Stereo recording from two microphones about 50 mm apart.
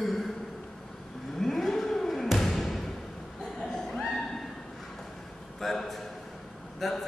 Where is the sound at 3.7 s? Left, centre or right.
Centre.